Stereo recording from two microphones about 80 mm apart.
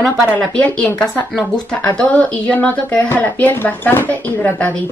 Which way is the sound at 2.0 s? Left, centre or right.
Centre.